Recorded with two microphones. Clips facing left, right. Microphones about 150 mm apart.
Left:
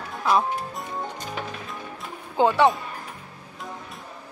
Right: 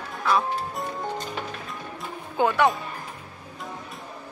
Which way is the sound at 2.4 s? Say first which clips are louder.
Left 2 dB; 25° left (ahead or behind).